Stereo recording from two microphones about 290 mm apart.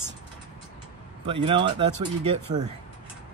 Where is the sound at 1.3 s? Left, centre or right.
Centre.